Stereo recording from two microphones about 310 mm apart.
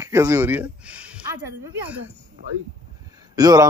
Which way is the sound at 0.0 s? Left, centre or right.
Centre.